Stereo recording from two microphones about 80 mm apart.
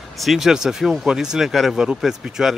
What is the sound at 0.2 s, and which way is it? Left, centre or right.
Speech, centre.